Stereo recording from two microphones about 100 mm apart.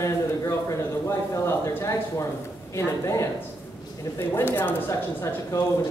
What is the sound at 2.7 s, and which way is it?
Speech, 30° left (ahead or behind).